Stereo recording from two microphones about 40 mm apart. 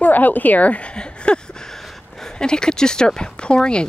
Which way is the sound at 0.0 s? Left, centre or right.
Left.